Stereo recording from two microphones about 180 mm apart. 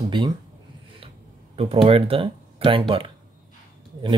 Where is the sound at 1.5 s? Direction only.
30° right (ahead or behind).